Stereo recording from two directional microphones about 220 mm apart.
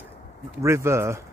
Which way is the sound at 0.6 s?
10° right (ahead or behind).